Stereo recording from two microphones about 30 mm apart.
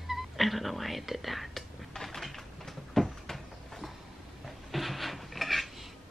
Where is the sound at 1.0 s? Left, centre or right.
Centre.